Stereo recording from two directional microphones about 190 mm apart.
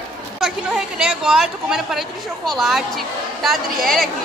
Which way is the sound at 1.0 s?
5° right (ahead or behind).